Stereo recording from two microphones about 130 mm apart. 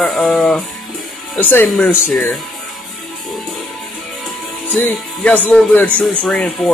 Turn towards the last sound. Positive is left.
turn(degrees=10)  # may be behind; listen again after turning